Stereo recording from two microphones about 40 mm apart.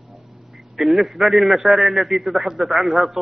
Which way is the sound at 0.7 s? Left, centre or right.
Centre.